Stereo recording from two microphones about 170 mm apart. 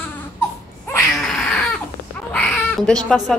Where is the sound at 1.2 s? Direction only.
5° left (ahead or behind).